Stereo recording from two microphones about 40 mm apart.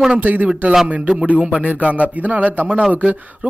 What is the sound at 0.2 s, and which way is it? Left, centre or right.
Speech, right.